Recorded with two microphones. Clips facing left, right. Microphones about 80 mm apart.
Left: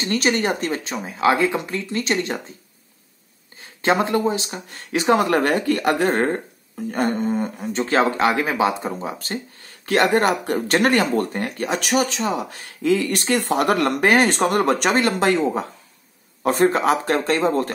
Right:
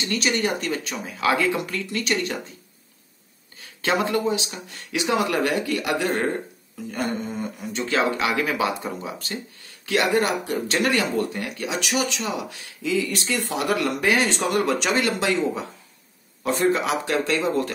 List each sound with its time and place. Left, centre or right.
0.0 s speech: left
3.5 s speech: left